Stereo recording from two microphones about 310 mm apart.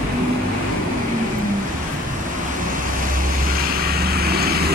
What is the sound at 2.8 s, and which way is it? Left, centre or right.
Vehicle, right.